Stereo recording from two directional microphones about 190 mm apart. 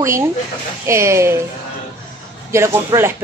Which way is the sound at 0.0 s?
15° right (ahead or behind).